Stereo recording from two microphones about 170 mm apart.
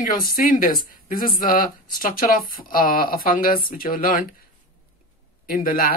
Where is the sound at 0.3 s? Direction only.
55° left (ahead or behind).